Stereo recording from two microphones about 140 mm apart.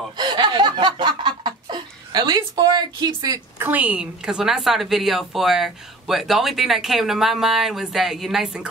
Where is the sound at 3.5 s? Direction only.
10° right (ahead or behind).